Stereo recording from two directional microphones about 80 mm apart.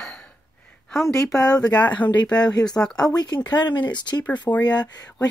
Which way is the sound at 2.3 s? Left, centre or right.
Left.